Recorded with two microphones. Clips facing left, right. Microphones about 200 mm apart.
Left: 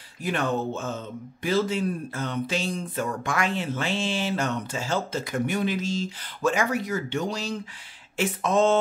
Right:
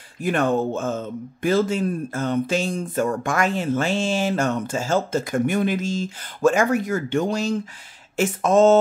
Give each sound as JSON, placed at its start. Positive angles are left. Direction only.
{"t": 0.2, "sound": "speech", "side_deg": -50}